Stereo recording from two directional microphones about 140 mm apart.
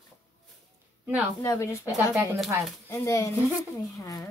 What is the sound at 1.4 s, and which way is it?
Speech, 20° left (ahead or behind).